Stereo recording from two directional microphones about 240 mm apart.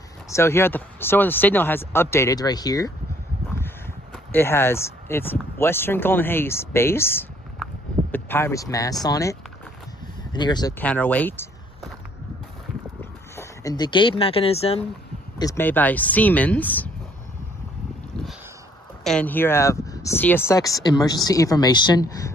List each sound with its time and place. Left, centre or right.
0.3 s speech: centre
10.8 s speech: centre
13.0 s speech: centre
15.3 s speech: centre
19.0 s speech: centre